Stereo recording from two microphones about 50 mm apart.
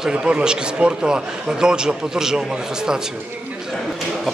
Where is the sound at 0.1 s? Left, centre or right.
Right.